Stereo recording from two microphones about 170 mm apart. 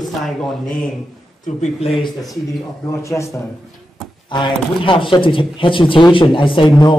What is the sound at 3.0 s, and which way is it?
Speech, 15° left (ahead or behind).